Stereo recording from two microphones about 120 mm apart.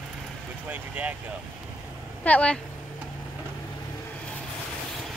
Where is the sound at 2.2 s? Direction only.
10° left (ahead or behind).